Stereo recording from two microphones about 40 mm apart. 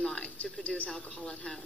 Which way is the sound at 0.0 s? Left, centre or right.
Left.